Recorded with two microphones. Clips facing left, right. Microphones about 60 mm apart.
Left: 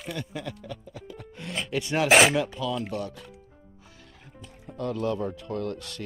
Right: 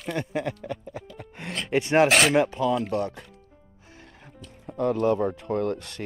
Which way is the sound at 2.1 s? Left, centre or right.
Centre.